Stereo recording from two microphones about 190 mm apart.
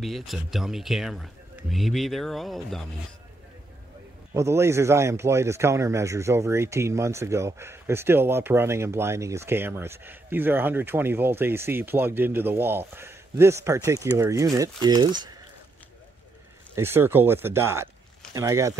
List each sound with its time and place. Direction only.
0.0 s speech: centre (ahead or behind)
4.3 s speech: 15° right (ahead or behind)
16.7 s speech: 10° right (ahead or behind)